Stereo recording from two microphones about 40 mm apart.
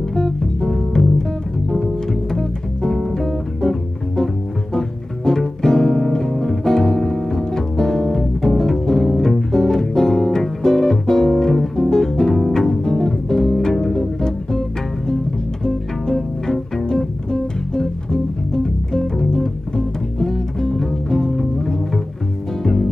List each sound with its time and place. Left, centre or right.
0.1 s music: centre
2.3 s music: centre
4.7 s music: centre
16.4 s music: centre